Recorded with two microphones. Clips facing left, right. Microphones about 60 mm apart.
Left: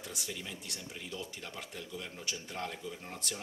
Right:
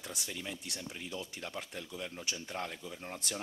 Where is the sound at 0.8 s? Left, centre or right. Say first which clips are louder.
Even; right.